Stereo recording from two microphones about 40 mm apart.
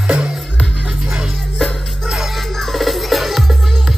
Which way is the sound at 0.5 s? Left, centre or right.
Left.